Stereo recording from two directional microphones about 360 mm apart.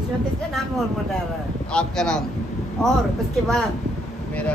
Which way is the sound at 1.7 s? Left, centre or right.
Centre.